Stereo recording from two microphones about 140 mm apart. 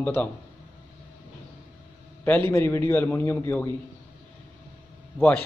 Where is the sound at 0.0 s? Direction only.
10° left (ahead or behind).